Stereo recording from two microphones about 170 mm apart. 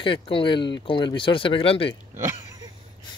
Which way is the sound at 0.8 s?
30° left (ahead or behind).